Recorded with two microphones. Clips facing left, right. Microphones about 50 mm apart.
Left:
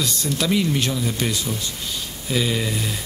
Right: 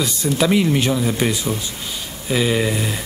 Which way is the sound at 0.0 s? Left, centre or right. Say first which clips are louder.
Right 5 dB; centre.